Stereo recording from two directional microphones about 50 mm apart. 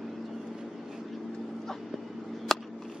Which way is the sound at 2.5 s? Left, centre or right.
Centre.